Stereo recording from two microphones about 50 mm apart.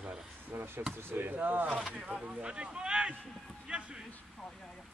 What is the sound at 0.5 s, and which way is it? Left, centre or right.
Speech, right.